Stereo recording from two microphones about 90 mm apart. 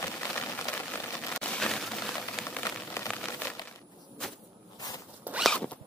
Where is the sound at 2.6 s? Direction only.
35° left (ahead or behind).